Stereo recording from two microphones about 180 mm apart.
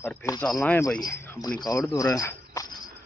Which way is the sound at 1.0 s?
20° left (ahead or behind).